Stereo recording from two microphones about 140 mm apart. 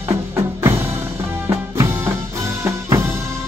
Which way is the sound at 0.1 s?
20° right (ahead or behind).